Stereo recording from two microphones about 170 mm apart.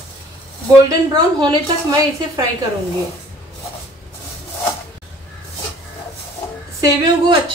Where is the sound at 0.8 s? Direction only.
25° right (ahead or behind).